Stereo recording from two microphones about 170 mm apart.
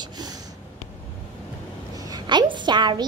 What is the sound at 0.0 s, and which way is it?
Sniff, 25° right (ahead or behind).